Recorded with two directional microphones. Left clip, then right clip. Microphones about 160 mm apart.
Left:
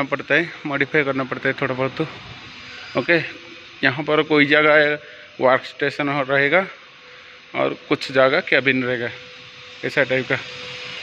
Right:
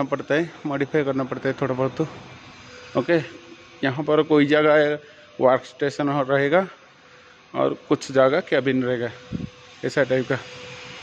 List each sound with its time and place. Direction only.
0.0 s a man's voice: 20° right (ahead or behind)
2.9 s a man's voice: 20° right (ahead or behind)